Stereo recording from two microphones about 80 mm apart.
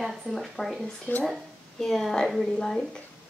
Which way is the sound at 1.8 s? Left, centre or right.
Centre.